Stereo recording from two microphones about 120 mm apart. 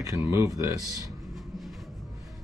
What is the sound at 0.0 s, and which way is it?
Speech, 25° right (ahead or behind).